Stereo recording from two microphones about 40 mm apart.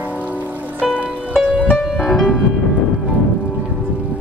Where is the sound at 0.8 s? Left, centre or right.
Right.